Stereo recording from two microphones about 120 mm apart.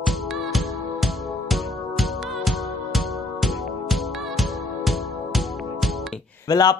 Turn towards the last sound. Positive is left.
turn(degrees=35)  # may be behind; listen again after turning